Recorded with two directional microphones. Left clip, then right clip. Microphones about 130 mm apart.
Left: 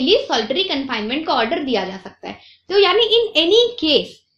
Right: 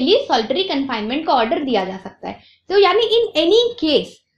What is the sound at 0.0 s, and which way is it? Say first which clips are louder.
A woman's voice: right 1 dB; 50° right (ahead or behind).